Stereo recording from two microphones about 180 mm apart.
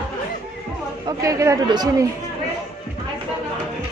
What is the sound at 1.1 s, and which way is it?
Speech, 20° right (ahead or behind).